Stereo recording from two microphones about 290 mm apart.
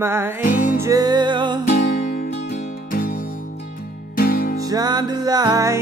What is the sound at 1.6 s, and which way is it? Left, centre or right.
Music, left.